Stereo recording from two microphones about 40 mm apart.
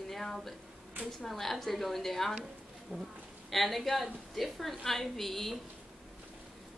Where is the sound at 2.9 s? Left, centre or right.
Right.